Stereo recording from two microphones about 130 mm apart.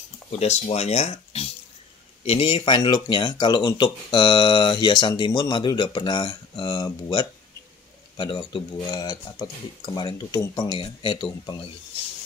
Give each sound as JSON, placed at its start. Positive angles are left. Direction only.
{"t": 0.3, "sound": "speech", "side_deg": 55}